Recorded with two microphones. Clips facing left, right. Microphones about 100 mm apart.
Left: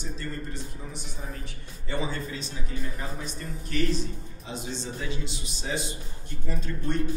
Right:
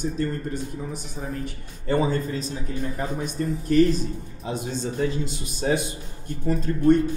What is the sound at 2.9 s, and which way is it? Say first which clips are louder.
Speech: right 9 dB; 55° right (ahead or behind).